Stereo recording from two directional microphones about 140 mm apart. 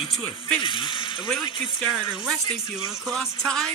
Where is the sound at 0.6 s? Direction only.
35° left (ahead or behind).